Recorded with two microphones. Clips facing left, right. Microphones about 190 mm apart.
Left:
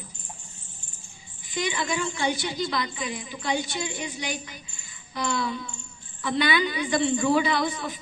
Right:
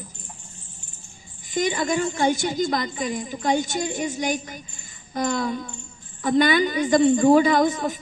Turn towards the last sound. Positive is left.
turn(degrees=-45)  # may be behind; listen again after turning